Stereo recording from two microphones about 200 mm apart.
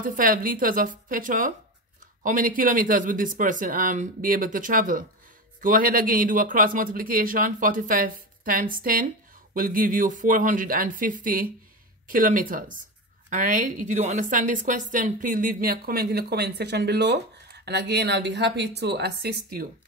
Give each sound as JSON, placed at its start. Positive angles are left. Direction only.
{"t": 0.0, "sound": "a woman's voice", "side_deg": -45}